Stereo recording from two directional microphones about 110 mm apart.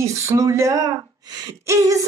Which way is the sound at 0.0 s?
30° right (ahead or behind).